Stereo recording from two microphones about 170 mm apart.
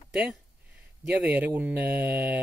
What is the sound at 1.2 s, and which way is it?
Speech, 10° right (ahead or behind).